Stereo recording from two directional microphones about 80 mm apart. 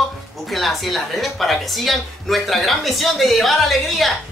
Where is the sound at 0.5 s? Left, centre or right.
Centre.